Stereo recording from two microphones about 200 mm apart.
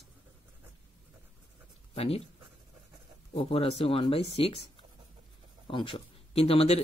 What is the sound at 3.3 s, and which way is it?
Speech, 30° left (ahead or behind).